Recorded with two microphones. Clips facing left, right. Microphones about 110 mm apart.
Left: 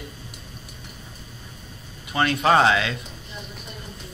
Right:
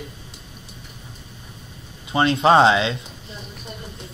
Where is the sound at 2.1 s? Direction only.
25° right (ahead or behind).